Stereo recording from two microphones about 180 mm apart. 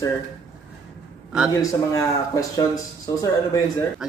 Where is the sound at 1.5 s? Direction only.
15° left (ahead or behind).